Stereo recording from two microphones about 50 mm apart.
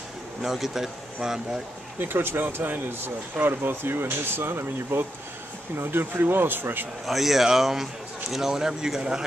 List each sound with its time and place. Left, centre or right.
0.4 s speech: centre
2.0 s speech: right
7.1 s speech: centre